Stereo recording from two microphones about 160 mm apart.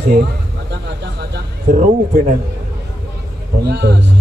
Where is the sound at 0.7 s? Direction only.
90° right.